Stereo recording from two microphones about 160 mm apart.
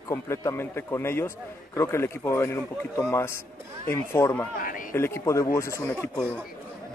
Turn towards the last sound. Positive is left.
turn(degrees=10)  # may be behind; listen again after turning